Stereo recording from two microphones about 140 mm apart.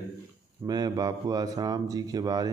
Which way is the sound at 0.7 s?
30° right (ahead or behind).